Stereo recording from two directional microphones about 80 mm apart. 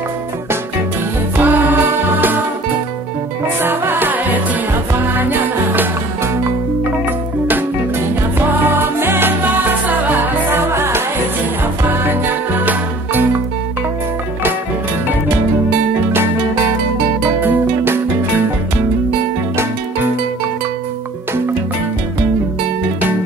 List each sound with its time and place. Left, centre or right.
1.3 s music: right
3.6 s music: right
8.4 s music: right
17.4 s music: right